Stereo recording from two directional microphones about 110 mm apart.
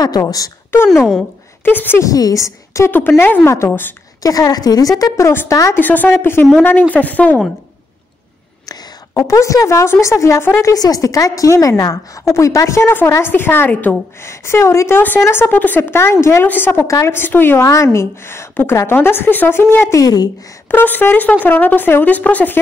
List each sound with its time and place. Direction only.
0.2 s a woman's voice: 30° left (ahead or behind)
0.7 s a woman's voice: 20° left (ahead or behind)
2.0 s a woman's voice: 35° left (ahead or behind)
4.2 s a woman's voice: 35° left (ahead or behind); by 7.3 s 15° left (ahead or behind)
8.6 s a woman's voice: 35° left (ahead or behind)
20.7 s speech: 15° left (ahead or behind)